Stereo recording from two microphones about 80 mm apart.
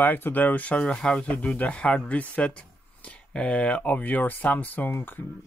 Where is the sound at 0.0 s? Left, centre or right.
Left.